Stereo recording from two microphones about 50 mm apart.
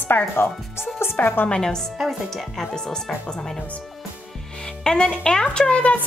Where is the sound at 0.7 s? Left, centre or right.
Left.